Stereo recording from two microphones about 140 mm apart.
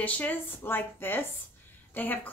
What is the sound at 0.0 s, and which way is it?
Speech, 10° left (ahead or behind).